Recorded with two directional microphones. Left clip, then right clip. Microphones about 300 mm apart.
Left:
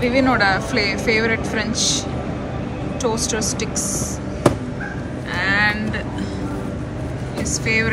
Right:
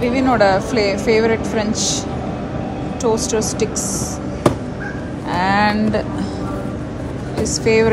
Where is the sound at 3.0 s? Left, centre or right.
Centre.